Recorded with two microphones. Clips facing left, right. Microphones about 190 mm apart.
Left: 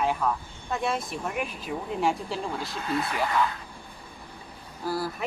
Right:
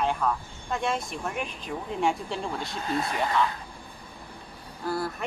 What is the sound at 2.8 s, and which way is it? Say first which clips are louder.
Speech: even; 35° right (ahead or behind).